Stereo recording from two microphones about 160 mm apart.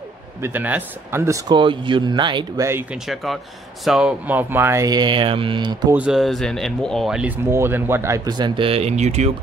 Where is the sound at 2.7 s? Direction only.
15° right (ahead or behind).